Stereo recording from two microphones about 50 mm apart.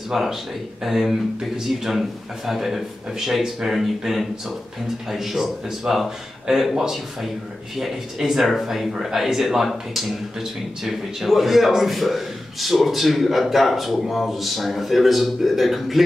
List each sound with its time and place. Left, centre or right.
0.1 s speech: centre